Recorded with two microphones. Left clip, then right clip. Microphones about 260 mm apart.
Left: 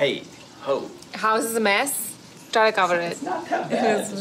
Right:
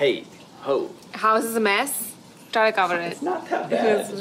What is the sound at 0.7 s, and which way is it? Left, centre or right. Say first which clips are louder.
A woman's voice: right 1 dB; centre.